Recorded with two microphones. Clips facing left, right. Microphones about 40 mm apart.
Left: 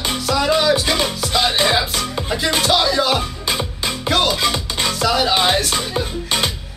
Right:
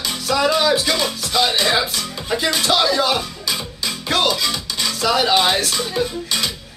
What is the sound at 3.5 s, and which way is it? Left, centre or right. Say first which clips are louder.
Music: left 3 dB; left.